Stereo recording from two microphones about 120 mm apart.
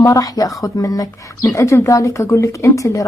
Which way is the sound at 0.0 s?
30° left (ahead or behind).